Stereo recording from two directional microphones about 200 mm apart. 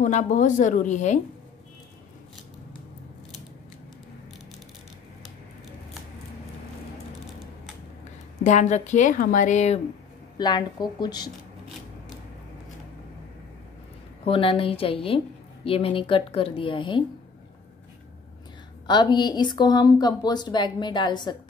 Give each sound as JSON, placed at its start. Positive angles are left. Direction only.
{"t": 0.0, "sound": "a woman's voice", "side_deg": 40}
{"t": 8.5, "sound": "a woman's voice", "side_deg": 35}
{"t": 10.3, "sound": "a woman's voice", "side_deg": 20}
{"t": 14.2, "sound": "a woman's voice", "side_deg": 25}
{"t": 18.9, "sound": "a woman's voice", "side_deg": 20}